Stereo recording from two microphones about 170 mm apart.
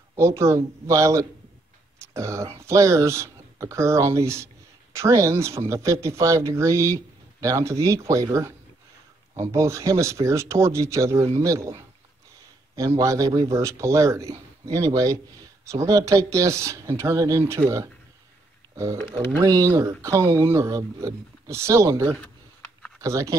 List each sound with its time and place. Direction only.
0.1 s a man's voice: 15° right (ahead or behind)
19.4 s speech: 20° right (ahead or behind)